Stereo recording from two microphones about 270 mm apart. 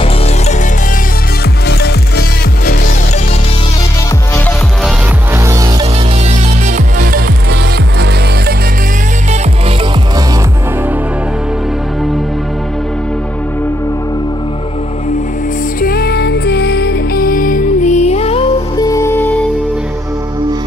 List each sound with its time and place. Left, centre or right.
1.7 s music: left
5.3 s music: centre
15.8 s music: left; by 19.4 s centre